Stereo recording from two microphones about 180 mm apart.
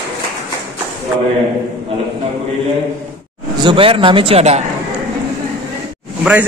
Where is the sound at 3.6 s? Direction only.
30° right (ahead or behind).